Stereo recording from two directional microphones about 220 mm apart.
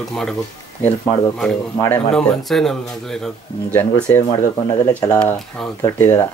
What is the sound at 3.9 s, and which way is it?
Speech, 15° left (ahead or behind).